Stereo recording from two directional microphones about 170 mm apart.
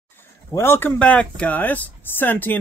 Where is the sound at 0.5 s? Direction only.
15° left (ahead or behind).